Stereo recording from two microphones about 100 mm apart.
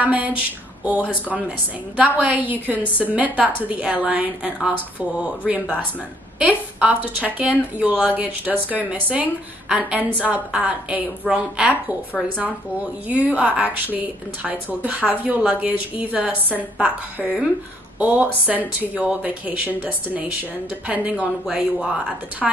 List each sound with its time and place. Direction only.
0.0 s a sound: 15° right (ahead or behind)
2.0 s speech: 15° right (ahead or behind)
13.1 s speech: 15° right (ahead or behind)